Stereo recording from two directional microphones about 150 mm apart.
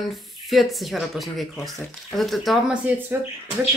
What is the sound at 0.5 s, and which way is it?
Speech, centre (ahead or behind).